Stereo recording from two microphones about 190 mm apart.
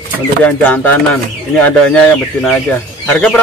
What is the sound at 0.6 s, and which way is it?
Speech, 10° left (ahead or behind).